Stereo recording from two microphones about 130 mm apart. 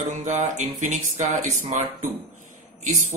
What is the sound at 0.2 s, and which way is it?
Speech, 65° right (ahead or behind).